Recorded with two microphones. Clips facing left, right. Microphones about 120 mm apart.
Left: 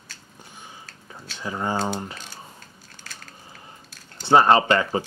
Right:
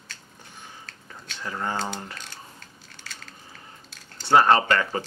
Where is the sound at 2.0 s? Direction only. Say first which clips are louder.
Left 4 dB; 15° left (ahead or behind).